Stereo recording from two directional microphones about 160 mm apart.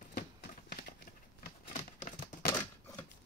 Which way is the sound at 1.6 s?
50° left (ahead or behind).